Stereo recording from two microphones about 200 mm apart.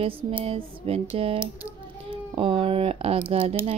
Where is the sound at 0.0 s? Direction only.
25° right (ahead or behind).